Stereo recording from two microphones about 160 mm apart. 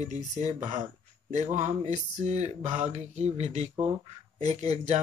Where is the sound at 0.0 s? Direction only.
45° right (ahead or behind).